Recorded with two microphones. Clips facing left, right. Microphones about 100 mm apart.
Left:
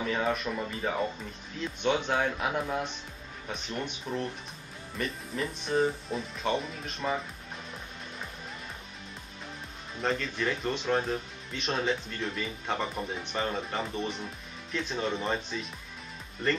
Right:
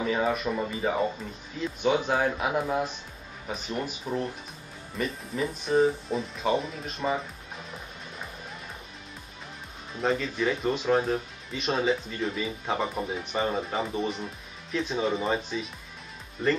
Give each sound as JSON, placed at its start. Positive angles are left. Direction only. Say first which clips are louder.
{"t": 0.0, "sound": "speech", "louder": "right 3 dB", "side_deg": -5}
{"t": 9.9, "sound": "speech", "louder": "right 4 dB", "side_deg": -5}